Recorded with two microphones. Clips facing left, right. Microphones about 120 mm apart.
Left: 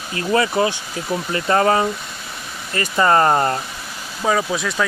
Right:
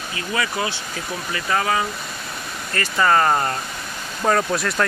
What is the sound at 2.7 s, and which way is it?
Speech, 20° left (ahead or behind).